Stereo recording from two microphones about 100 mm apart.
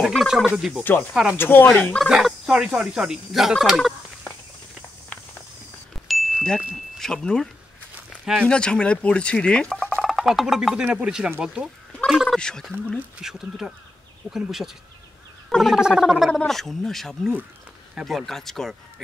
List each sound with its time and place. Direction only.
0.0 s speech: centre (ahead or behind)
1.3 s speech: 20° left (ahead or behind)
2.0 s fowl: 5° right (ahead or behind)
6.0 s a sound: centre (ahead or behind)
6.7 s speech: 5° left (ahead or behind)
8.5 s speech: 10° left (ahead or behind)
10.9 s speech: 15° right (ahead or behind); by 12.7 s 5° left (ahead or behind)
13.2 s speech: 5° right (ahead or behind)